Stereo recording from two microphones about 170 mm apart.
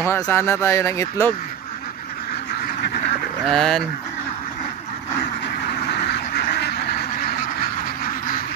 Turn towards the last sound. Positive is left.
turn(degrees=70)  # may be behind; listen again after turning